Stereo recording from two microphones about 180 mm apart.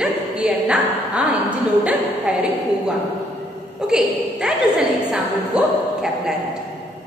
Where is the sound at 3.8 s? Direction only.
5° right (ahead or behind).